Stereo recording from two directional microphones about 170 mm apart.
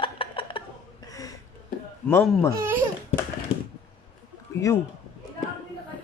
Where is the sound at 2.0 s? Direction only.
10° left (ahead or behind).